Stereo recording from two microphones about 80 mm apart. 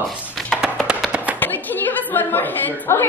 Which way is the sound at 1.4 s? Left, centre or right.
Left.